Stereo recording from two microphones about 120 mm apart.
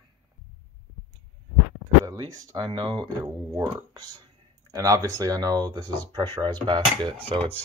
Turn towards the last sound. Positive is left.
turn(degrees=-45)  # may be behind; listen again after turning